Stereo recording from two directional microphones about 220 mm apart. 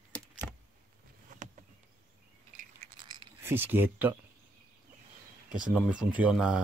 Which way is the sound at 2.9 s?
20° right (ahead or behind).